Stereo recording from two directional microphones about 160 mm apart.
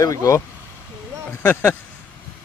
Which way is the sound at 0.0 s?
20° left (ahead or behind).